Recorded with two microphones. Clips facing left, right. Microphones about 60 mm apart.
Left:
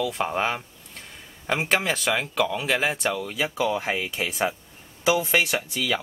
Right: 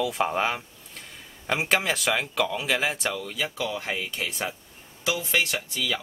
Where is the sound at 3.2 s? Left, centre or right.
Centre.